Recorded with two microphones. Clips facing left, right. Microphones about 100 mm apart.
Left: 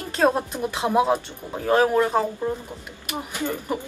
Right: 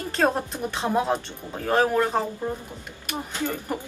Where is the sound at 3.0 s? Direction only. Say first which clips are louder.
Left 1 dB; 15° left (ahead or behind).